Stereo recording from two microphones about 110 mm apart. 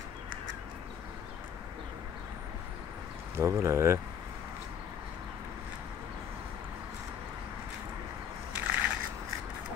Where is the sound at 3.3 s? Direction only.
25° right (ahead or behind).